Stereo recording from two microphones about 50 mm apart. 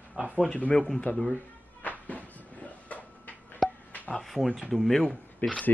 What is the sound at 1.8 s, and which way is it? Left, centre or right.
Music, left.